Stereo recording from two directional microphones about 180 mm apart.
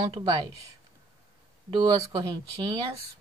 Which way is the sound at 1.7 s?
25° right (ahead or behind).